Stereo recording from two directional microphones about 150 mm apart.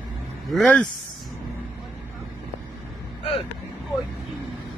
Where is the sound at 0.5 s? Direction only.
10° left (ahead or behind).